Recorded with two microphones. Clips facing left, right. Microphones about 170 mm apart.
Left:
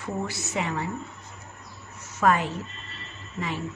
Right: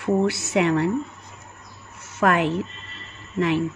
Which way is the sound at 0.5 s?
70° right (ahead or behind).